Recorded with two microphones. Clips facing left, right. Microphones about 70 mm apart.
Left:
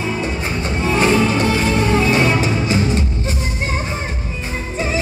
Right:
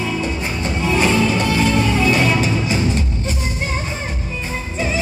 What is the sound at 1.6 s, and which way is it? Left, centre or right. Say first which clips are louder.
Music: even; left.